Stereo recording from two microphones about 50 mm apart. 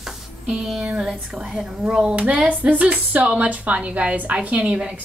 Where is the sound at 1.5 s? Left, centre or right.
Centre.